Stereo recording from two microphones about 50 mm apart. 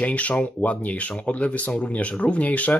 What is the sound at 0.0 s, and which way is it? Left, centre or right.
Speech, left.